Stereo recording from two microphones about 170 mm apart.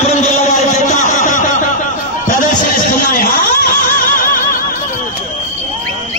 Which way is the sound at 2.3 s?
50° left (ahead or behind).